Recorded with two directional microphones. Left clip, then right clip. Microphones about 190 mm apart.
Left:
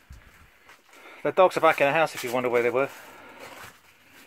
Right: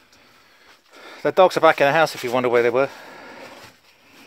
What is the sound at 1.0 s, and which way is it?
Speech, 55° right (ahead or behind).